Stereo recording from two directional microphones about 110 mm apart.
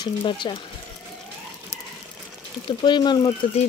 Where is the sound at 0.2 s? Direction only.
50° left (ahead or behind).